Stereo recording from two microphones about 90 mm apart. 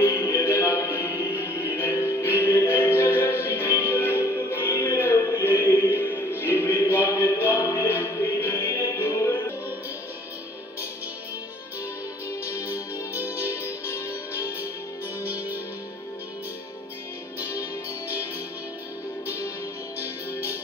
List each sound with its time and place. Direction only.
0.0 s music: 30° left (ahead or behind)
12.3 s music: 30° left (ahead or behind)
15.2 s music: 20° right (ahead or behind)
17.4 s music: 35° left (ahead or behind)
19.2 s music: 30° left (ahead or behind)